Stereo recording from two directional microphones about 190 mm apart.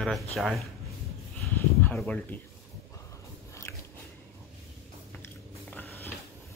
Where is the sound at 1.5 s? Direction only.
10° left (ahead or behind).